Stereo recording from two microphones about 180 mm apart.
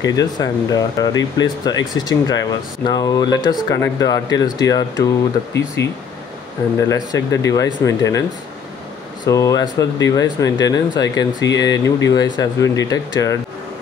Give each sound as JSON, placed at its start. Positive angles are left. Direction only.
{"t": 0.0, "sound": "speech", "side_deg": 20}
{"t": 7.1, "sound": "speech", "side_deg": 20}
{"t": 9.2, "sound": "speech", "side_deg": 20}